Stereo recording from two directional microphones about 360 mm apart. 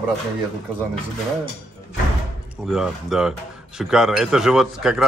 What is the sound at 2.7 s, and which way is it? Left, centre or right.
Speech, centre.